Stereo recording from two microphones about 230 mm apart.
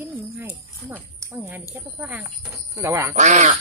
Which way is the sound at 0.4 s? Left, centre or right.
Centre.